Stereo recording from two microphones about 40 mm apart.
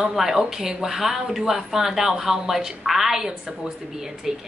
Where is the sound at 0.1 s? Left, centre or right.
Centre.